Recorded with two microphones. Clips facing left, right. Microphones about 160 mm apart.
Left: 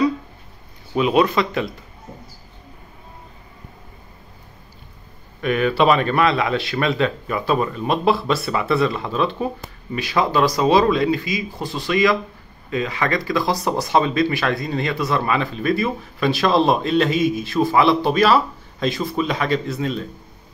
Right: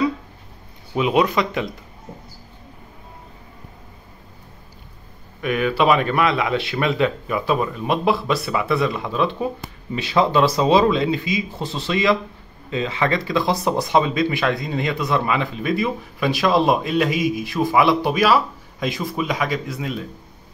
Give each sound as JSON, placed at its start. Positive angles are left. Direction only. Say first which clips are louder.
{"t": 0.9, "sound": "speech", "louder": "left 1 dB", "side_deg": -15}
{"t": 5.4, "sound": "speech", "louder": "left 2 dB", "side_deg": -10}